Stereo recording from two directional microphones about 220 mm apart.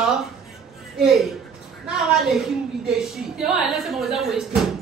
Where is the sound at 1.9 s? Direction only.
Centre (ahead or behind).